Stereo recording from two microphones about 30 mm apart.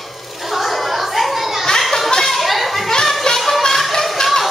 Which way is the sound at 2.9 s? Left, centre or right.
Centre.